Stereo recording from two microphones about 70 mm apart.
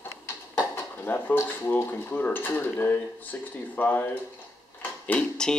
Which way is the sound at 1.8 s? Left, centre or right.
Left.